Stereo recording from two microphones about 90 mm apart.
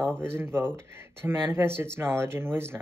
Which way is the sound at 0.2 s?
25° right (ahead or behind).